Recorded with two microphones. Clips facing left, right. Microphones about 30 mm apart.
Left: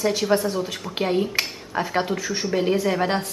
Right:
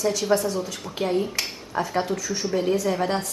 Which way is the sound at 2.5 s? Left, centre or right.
Left.